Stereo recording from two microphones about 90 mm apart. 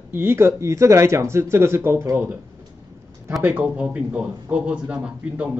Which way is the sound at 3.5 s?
15° right (ahead or behind).